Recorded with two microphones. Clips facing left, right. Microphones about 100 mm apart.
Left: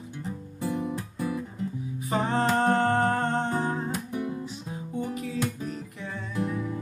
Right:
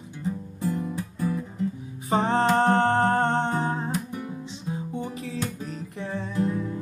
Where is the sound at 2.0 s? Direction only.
30° right (ahead or behind).